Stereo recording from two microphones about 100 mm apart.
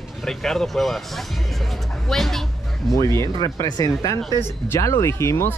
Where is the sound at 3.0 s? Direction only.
30° left (ahead or behind).